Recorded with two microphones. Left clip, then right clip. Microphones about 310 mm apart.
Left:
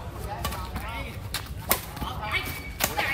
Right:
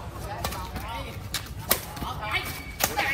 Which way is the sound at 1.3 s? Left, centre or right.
Left.